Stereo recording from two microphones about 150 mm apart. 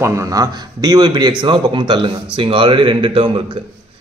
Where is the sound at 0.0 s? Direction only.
20° right (ahead or behind).